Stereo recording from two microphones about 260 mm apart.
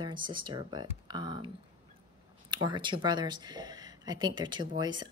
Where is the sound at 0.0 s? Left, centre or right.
Centre.